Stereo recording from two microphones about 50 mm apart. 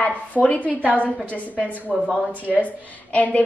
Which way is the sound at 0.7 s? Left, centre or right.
Right.